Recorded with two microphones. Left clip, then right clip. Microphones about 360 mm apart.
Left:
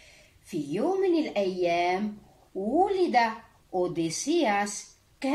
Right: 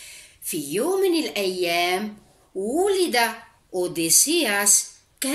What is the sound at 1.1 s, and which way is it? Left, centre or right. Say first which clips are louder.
Speech: right 3 dB; centre.